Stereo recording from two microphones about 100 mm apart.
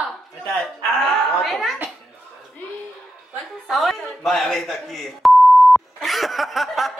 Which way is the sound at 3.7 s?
Centre (ahead or behind).